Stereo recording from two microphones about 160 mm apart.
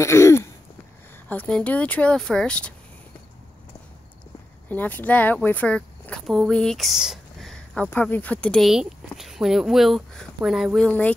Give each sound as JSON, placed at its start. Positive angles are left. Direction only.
{"t": 0.0, "sound": "throat clearing", "side_deg": 15}
{"t": 1.3, "sound": "speech", "side_deg": 10}
{"t": 4.6, "sound": "speech", "side_deg": 10}
{"t": 10.9, "sound": "speech", "side_deg": 10}